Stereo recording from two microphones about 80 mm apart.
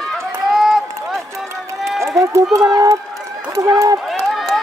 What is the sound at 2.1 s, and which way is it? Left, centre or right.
Run, right.